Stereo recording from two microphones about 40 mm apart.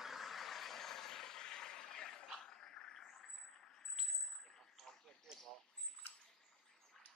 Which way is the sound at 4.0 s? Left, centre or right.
Centre.